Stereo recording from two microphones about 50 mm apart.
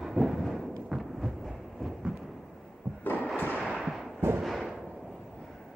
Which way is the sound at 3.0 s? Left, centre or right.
Left.